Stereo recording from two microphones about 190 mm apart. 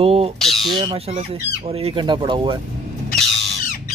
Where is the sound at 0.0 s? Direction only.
30° right (ahead or behind).